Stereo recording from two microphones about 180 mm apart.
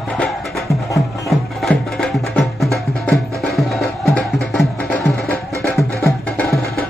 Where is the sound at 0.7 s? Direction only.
15° left (ahead or behind).